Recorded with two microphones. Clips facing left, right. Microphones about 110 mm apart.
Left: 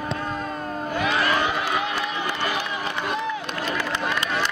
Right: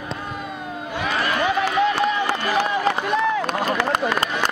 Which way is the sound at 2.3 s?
90° right.